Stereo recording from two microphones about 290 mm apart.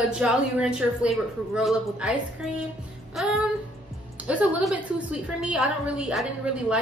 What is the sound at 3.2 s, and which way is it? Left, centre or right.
A woman's voice, centre.